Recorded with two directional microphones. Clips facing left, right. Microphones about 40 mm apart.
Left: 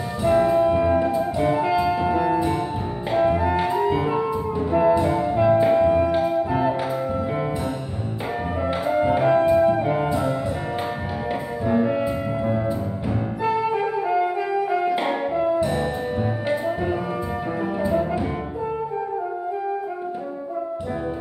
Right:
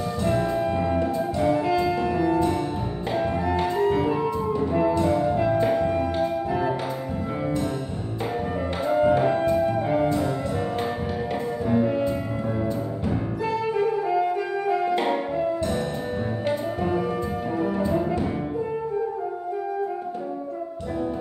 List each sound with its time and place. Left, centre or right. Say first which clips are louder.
0.2 s music: left 7 dB; centre
9.0 s music: left 3 dB; centre
13.4 s music: left 3 dB; left